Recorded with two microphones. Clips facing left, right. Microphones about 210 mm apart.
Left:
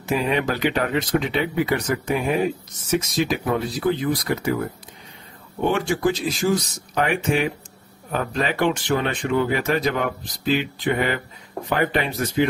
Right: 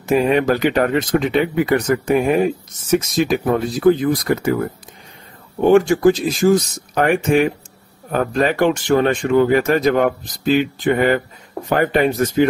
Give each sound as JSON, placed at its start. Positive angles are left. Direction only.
{"t": 0.0, "sound": "speech", "side_deg": -45}
{"t": 5.6, "sound": "speech", "side_deg": -45}